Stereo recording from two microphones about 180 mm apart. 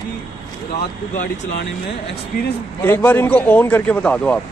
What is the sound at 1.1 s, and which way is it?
Speech, 40° left (ahead or behind).